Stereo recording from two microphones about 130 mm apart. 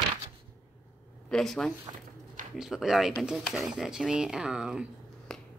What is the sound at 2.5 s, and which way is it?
Speech, 5° right (ahead or behind).